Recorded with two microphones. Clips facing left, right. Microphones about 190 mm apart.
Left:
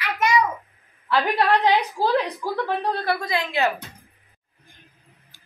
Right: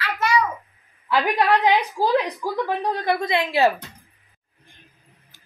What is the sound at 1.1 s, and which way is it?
A woman's voice, 15° right (ahead or behind).